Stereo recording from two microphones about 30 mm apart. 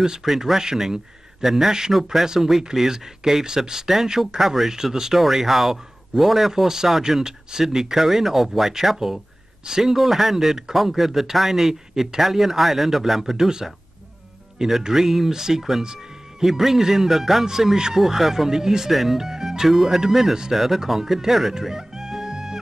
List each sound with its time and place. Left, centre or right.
0.4 s speech: centre
2.2 s speech: centre
5.2 s speech: centre
14.8 s speech: centre
15.8 s music: right
16.4 s speech: centre
21.6 s music: centre